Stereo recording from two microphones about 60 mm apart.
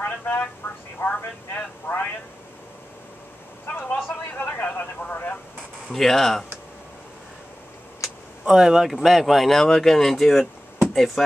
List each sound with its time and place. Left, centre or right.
0.0 s vehicle: left
1.0 s speech: left
3.6 s a man's voice: left
5.9 s speech: centre
8.5 s speech: centre